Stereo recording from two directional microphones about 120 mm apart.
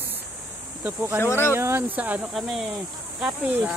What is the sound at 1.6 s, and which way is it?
Speech, 20° right (ahead or behind).